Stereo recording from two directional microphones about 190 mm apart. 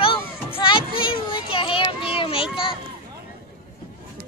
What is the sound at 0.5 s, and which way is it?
Child singing, 25° left (ahead or behind).